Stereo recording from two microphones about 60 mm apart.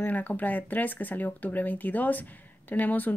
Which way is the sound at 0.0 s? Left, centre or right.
Left.